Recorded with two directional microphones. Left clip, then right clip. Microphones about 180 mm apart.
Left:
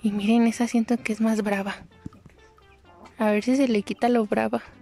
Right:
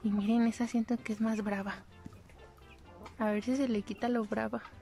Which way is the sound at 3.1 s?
20° left (ahead or behind).